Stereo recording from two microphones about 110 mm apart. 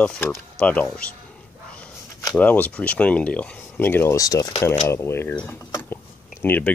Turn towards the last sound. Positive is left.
turn(degrees=20)  # may be behind; listen again after turning